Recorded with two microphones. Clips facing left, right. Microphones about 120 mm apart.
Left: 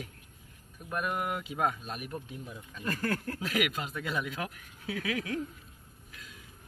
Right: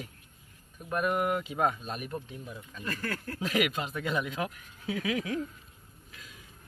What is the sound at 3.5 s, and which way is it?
Speech, centre (ahead or behind).